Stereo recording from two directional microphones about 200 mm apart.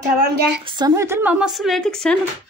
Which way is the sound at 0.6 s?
20° right (ahead or behind).